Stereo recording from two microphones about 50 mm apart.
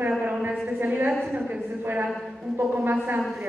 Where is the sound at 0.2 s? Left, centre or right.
Right.